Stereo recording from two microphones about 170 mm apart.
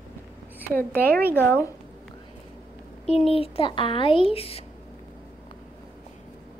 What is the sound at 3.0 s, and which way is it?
Speech, 35° left (ahead or behind).